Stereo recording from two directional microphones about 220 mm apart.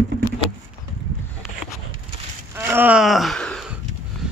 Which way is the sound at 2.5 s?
10° right (ahead or behind).